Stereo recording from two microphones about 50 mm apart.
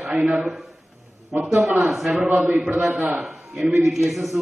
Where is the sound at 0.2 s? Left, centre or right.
Right.